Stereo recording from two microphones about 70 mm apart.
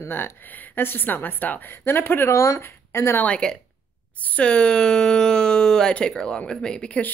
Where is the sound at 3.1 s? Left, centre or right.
Centre.